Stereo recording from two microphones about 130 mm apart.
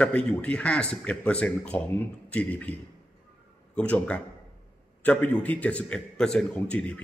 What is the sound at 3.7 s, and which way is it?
A man's voice, 10° left (ahead or behind).